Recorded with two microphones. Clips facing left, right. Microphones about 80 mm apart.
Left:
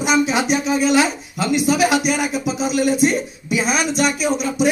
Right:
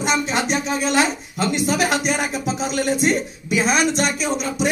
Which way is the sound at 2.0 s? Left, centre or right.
Right.